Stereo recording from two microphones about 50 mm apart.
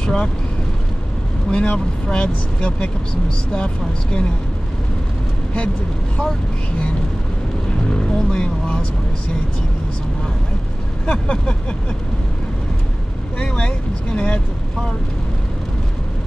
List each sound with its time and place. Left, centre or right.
0.0 s speech: centre
1.5 s speech: centre
7.9 s vehicle: centre
11.1 s speech: left
13.4 s speech: centre